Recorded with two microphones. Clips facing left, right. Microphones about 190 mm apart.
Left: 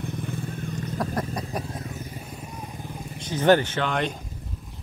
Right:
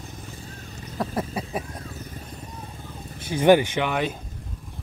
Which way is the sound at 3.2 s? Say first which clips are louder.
Right 2 dB; 10° right (ahead or behind).